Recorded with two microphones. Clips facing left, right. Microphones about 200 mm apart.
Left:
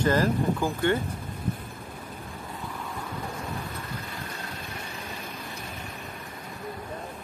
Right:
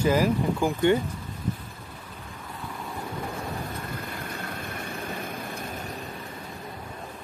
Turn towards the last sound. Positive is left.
turn(degrees=-55)  # may be behind; listen again after turning